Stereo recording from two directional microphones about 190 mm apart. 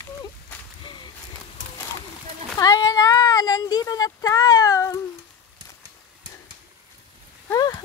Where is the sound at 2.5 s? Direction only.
20° left (ahead or behind).